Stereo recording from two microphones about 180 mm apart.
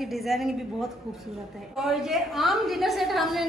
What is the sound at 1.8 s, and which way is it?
Speech, centre (ahead or behind).